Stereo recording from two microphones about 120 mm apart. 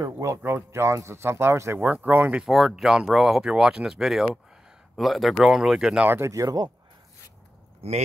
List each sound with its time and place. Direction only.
0.0 s speech: 25° right (ahead or behind)
2.4 s speech: centre (ahead or behind)
6.0 s speech: 20° right (ahead or behind)
7.8 s speech: 60° right (ahead or behind)